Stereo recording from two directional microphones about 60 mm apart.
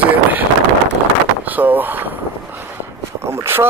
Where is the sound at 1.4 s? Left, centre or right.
Right.